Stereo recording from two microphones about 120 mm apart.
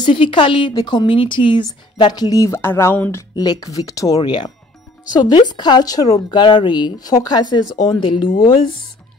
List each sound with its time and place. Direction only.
0.0 s a woman's voice: 40° left (ahead or behind); by 3.3 s 20° left (ahead or behind)
3.3 s speech: 35° left (ahead or behind)
5.5 s speech: 35° left (ahead or behind)